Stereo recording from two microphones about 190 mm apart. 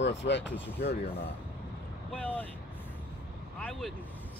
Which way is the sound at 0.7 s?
55° left (ahead or behind).